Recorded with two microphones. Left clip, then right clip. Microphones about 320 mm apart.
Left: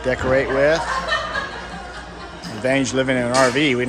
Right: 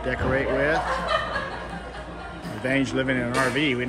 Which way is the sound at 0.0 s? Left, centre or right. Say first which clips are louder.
Left 6 dB; centre.